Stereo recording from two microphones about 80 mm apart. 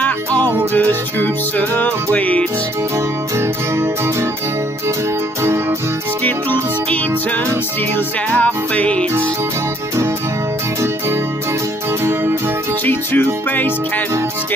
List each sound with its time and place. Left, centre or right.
0.0 s music: centre
3.3 s music: right
5.4 s music: right
6.2 s music: left
8.3 s music: centre
12.8 s music: left